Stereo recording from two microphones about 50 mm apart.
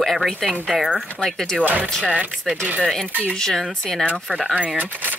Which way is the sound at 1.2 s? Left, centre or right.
Centre.